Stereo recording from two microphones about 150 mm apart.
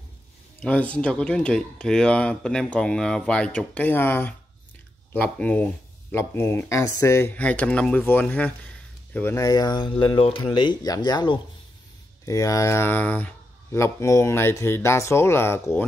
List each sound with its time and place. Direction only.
0.6 s speech: 10° left (ahead or behind)